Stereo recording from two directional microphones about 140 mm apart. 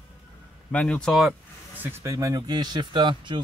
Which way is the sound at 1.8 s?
20° right (ahead or behind).